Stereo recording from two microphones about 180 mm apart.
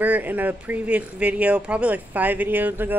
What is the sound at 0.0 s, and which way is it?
Speech, 10° right (ahead or behind).